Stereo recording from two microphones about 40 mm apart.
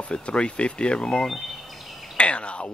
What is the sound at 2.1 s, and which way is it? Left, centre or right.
Cricket, left.